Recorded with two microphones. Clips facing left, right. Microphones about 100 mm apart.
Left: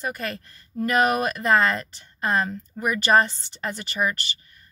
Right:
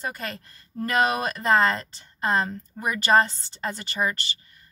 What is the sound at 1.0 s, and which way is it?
Speech, 25° right (ahead or behind).